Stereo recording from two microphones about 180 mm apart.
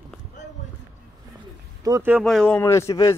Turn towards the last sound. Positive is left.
turn(degrees=15)  # may be behind; listen again after turning